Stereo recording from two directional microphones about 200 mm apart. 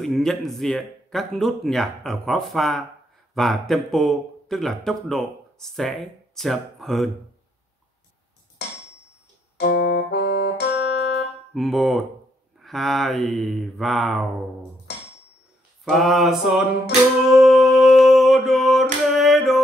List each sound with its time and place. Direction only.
0.0 s speech: centre (ahead or behind)
9.6 s music: 55° left (ahead or behind)
11.5 s speech: centre (ahead or behind)
15.8 s speech: centre (ahead or behind)
17.3 s a sound: centre (ahead or behind)